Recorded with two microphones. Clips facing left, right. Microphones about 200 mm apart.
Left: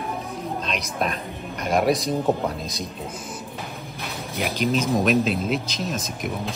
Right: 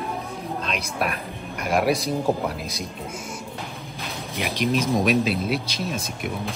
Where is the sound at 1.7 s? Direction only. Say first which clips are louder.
Left 1 dB; centre (ahead or behind).